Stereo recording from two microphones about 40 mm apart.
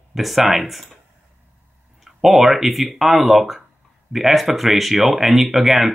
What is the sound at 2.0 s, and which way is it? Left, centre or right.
Speech, centre.